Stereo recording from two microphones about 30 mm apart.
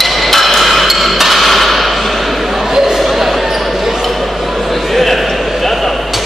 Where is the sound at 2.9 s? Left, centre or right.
Centre.